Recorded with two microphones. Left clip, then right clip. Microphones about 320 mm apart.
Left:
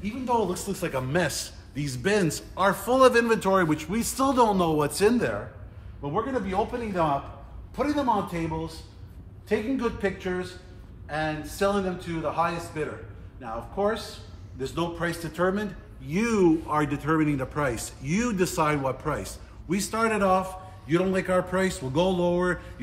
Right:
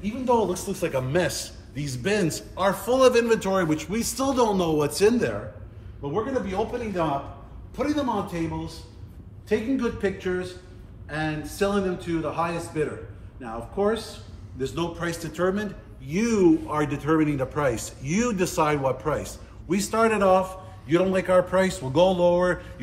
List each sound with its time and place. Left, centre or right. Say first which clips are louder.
0.0 s a man's voice: right 3 dB; centre